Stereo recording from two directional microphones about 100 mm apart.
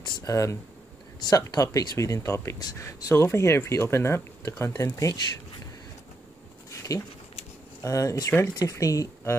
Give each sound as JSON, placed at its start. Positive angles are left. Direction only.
{"t": 0.0, "sound": "speech", "side_deg": 35}
{"t": 6.7, "sound": "a sound", "side_deg": 35}
{"t": 7.8, "sound": "speech", "side_deg": 35}